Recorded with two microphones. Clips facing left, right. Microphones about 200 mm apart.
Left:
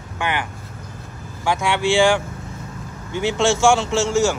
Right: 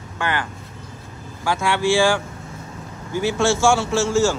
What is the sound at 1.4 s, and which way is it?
Speech, 15° left (ahead or behind).